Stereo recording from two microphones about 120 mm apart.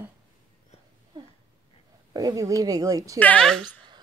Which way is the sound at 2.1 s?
35° right (ahead or behind).